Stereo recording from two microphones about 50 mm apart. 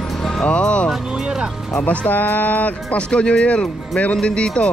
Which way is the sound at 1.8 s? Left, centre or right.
Left.